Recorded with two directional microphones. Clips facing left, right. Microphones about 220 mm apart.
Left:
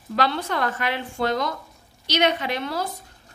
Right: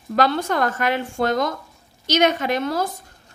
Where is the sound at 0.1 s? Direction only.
45° right (ahead or behind).